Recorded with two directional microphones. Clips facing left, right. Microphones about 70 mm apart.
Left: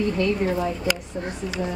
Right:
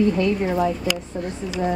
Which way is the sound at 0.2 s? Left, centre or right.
Centre.